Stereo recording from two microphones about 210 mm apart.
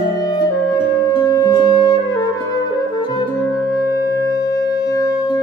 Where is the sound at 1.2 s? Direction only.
15° left (ahead or behind).